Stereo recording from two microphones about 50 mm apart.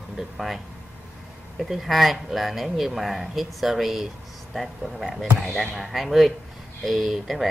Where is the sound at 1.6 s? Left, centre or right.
Centre.